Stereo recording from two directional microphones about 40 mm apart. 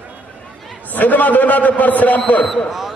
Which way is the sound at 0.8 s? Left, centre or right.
Left.